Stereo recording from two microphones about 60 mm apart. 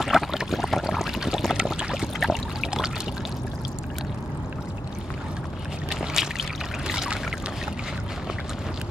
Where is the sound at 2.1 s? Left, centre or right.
Centre.